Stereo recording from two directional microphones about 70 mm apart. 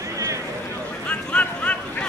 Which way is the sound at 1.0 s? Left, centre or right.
Centre.